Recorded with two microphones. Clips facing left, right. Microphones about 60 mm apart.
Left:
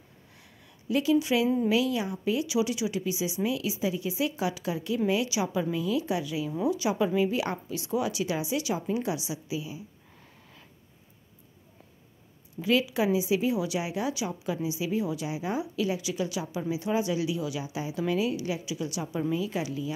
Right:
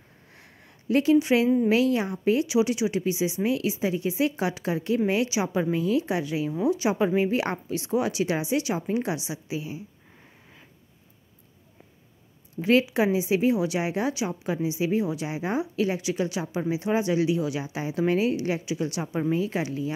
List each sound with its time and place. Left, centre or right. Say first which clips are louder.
0.4 s a sound: right 2 dB; right
1.7 s speech: right 4 dB; right
12.6 s speech: right 4 dB; right